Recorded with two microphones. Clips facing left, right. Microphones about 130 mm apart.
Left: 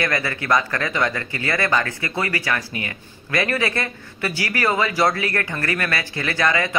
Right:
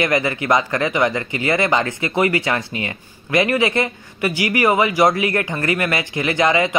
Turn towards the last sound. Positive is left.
turn(degrees=-20)  # may be behind; listen again after turning